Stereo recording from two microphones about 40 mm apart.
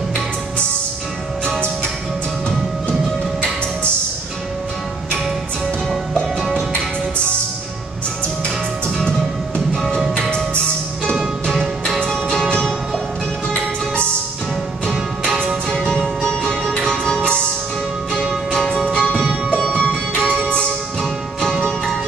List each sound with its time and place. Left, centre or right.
12.1 s music: centre
14.9 s music: left
18.9 s music: centre
21.0 s music: centre